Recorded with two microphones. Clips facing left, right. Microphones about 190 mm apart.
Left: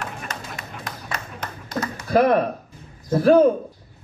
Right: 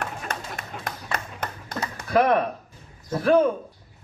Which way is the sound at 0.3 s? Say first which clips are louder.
Right 1 dB; 55° right (ahead or behind).